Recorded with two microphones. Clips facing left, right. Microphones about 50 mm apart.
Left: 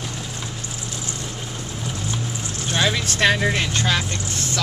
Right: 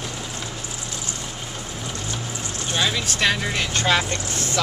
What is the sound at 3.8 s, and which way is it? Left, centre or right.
Speech, centre.